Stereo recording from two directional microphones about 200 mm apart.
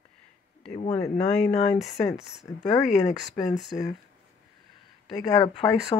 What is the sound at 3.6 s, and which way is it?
Speech, centre (ahead or behind).